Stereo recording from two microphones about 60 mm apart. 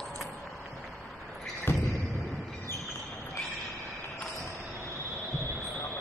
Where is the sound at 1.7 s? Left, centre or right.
Left.